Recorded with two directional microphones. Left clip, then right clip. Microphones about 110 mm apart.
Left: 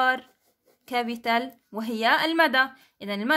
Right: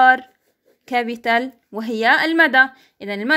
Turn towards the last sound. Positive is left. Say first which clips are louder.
# right 5 dB
turn(degrees=-30)  # may be behind; listen again after turning